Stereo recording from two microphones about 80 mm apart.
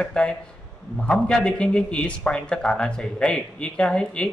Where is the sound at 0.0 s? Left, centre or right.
Centre.